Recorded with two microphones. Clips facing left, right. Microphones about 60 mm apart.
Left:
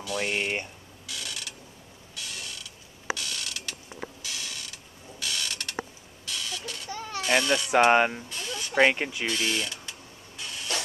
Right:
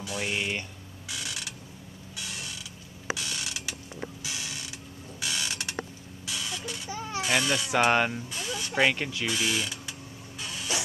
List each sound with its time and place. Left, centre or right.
0.2 s speech: left
1.0 s mechanisms: centre
2.1 s creak: centre
5.2 s a sound: centre
7.2 s speech: centre
7.9 s speech: centre
8.3 s a sound: centre
8.7 s speech: centre
9.2 s speech: centre
10.4 s printer: centre